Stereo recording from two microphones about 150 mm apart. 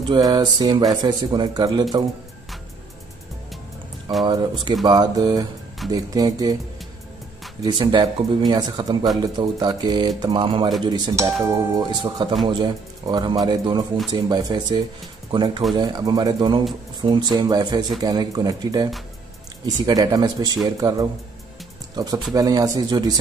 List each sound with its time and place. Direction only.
0.1 s speech: 25° right (ahead or behind)
4.2 s speech: 30° right (ahead or behind)
7.6 s speech: 30° right (ahead or behind)
12.0 s speech: 30° right (ahead or behind)